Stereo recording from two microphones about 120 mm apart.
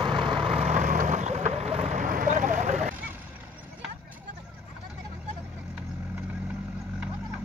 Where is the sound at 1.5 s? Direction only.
60° right (ahead or behind); by 2.9 s 80° right.